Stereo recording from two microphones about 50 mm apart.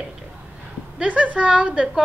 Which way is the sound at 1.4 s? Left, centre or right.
Centre.